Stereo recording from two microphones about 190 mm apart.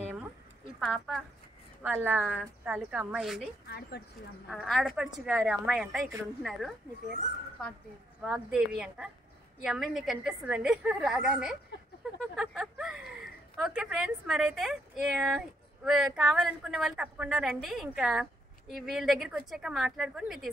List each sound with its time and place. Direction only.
0.7 s a woman's voice: centre (ahead or behind)
3.6 s speech: 60° left (ahead or behind)
4.5 s a woman's voice: centre (ahead or behind)
8.2 s a woman's voice: 5° right (ahead or behind)